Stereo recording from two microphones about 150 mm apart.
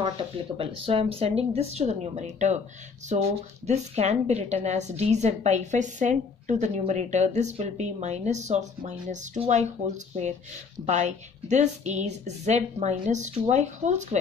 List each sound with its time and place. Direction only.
0.6 s a woman's voice: 40° right (ahead or behind)